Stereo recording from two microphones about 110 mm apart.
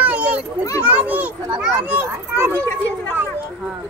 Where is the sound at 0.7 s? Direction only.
15° right (ahead or behind).